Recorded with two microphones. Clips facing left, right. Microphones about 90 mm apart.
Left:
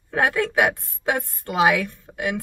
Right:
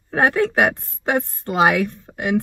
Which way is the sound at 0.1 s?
35° right (ahead or behind).